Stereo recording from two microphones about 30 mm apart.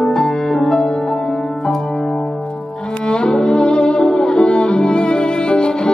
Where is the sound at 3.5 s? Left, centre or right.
Left.